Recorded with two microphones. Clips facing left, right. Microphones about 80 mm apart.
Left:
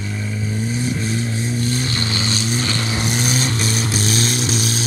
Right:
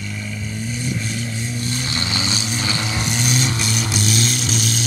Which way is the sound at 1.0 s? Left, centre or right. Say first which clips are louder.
Left 4 dB; left.